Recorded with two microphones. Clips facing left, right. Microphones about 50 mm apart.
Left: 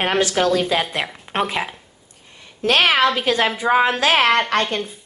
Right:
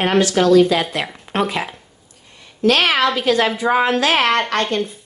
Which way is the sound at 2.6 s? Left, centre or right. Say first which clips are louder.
Right 1 dB; left.